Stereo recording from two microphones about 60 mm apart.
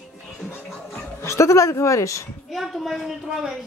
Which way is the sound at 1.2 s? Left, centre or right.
Left.